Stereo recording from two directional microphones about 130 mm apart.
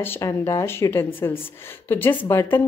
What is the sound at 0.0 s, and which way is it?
A woman's voice, 20° left (ahead or behind).